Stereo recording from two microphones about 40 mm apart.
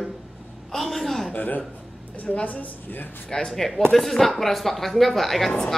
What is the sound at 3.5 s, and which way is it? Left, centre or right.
Speech, centre.